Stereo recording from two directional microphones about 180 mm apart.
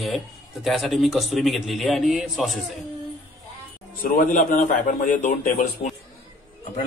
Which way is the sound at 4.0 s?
45° left (ahead or behind).